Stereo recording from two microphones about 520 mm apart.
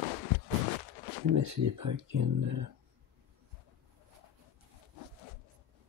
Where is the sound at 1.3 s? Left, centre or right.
Right.